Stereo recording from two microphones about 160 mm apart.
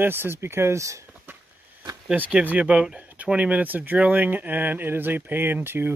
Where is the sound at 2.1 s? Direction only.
10° right (ahead or behind).